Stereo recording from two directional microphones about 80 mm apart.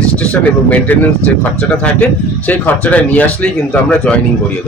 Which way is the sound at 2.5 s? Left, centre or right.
Centre.